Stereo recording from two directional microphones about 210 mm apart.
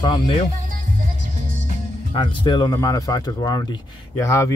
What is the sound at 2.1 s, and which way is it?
Speech, 20° left (ahead or behind).